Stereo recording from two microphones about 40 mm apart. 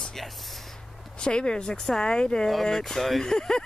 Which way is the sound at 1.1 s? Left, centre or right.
Left.